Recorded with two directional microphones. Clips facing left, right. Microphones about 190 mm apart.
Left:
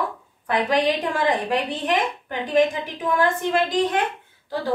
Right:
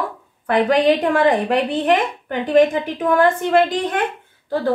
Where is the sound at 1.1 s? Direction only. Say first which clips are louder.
Right 6 dB; 60° right (ahead or behind).